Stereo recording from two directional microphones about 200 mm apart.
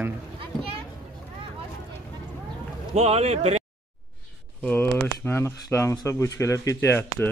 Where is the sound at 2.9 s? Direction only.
30° right (ahead or behind).